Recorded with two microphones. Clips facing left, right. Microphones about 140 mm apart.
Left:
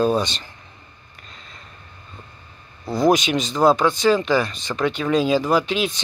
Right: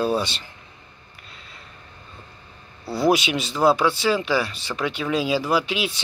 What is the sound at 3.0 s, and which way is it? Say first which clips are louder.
Speech: left 2 dB; 10° right (ahead or behind).